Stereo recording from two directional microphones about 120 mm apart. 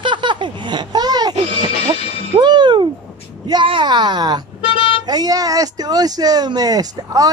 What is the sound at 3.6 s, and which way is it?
Speech, 45° right (ahead or behind).